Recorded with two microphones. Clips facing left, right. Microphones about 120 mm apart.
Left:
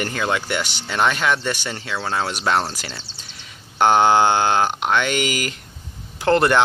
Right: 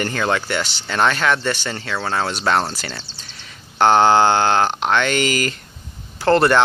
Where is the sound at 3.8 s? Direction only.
10° left (ahead or behind).